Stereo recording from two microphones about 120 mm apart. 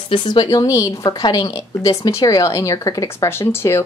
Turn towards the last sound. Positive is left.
turn(degrees=20)  # may be behind; listen again after turning